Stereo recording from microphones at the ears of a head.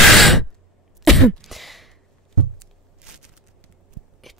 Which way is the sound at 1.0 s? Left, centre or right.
Centre.